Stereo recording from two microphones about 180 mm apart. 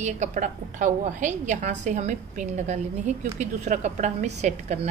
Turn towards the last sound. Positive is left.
turn(degrees=-40)  # may be behind; listen again after turning